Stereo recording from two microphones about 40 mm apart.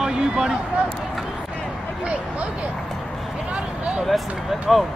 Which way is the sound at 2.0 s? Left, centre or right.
Right.